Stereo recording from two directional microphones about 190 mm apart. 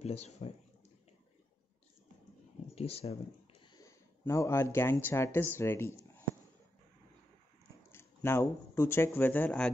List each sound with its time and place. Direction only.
0.0 s speech: 35° left (ahead or behind)
2.7 s speech: 30° left (ahead or behind)
3.7 s speech: 15° left (ahead or behind)
7.9 s speech: 15° left (ahead or behind)